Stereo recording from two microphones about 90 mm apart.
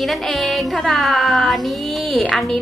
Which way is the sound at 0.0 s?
Centre (ahead or behind).